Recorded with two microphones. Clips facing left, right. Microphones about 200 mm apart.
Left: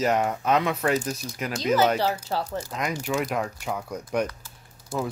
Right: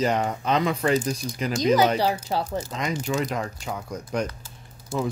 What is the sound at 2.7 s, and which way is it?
Speech, 5° left (ahead or behind).